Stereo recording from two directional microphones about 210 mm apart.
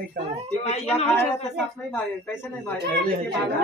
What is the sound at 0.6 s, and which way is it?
Speech, 30° left (ahead or behind).